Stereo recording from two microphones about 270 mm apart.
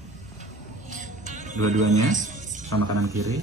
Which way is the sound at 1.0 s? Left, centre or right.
Right.